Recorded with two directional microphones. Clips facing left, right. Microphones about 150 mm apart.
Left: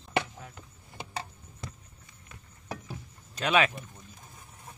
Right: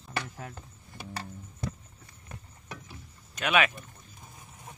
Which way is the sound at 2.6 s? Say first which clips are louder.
Left 6 dB; 40° left (ahead or behind).